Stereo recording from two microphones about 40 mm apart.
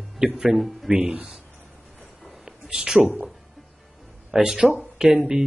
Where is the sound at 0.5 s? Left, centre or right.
Centre.